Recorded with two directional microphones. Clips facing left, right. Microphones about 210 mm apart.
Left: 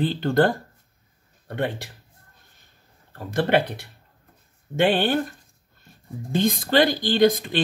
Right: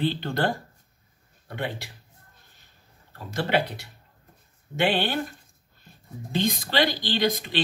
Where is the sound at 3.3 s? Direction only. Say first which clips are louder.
Left 4 dB; 55° left (ahead or behind).